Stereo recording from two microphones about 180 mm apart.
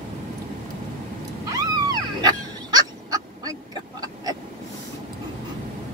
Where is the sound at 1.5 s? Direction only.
20° right (ahead or behind).